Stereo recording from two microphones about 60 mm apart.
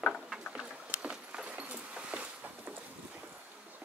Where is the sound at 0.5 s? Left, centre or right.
Centre.